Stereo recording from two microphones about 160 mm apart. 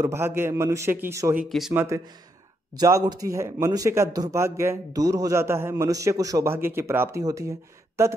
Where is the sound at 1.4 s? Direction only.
Centre (ahead or behind).